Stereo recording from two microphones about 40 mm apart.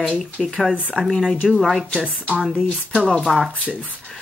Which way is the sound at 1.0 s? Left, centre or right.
Left.